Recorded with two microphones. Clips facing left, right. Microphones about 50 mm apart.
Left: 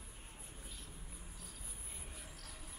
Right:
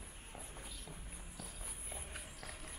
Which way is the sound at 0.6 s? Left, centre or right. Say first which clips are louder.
Right 3 dB; right.